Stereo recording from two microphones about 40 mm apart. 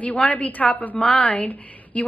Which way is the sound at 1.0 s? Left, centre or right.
Left.